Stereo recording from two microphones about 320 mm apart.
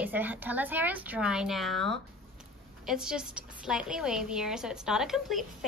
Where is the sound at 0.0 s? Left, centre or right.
Centre.